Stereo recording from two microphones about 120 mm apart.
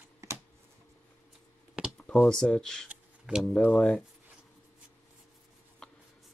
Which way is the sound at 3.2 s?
5° right (ahead or behind).